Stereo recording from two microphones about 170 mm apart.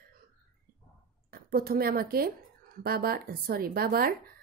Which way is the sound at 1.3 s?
60° right (ahead or behind).